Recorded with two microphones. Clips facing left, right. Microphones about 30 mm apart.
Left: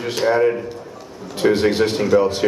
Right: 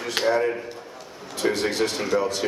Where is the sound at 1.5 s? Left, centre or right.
Left.